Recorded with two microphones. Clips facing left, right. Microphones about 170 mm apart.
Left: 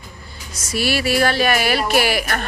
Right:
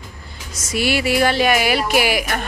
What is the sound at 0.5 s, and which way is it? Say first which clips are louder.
A woman's voice: right 1 dB; 20° right (ahead or behind).